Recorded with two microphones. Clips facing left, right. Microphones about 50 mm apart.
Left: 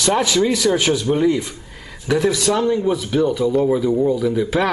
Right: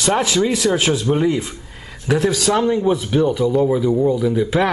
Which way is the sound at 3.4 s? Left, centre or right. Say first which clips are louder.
Right 1 dB; centre.